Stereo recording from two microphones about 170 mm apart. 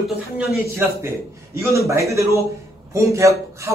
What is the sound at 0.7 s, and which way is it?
Speech, 15° right (ahead or behind).